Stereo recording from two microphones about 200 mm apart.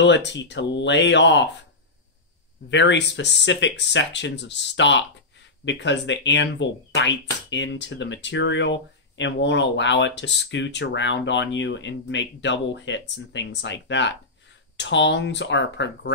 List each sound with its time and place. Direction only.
0.0 s speech: 65° left (ahead or behind)
2.7 s speech: 60° left (ahead or behind)